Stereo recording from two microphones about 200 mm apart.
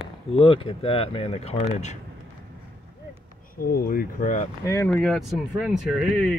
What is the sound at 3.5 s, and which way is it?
Speech, 45° left (ahead or behind).